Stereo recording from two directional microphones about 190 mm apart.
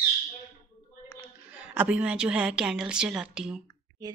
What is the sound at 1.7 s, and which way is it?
A woman's voice, 5° right (ahead or behind).